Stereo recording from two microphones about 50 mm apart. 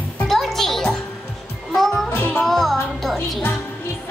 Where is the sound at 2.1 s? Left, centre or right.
Left.